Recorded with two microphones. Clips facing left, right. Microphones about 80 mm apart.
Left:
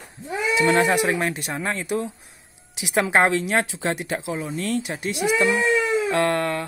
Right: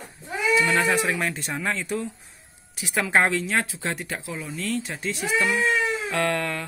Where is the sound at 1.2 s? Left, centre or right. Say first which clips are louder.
Left 2 dB; centre.